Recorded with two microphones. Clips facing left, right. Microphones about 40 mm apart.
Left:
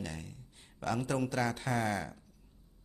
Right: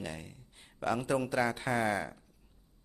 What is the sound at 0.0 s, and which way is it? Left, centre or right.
Speech, centre.